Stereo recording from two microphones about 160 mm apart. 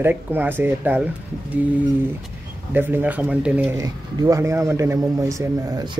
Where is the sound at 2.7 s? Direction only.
10° right (ahead or behind).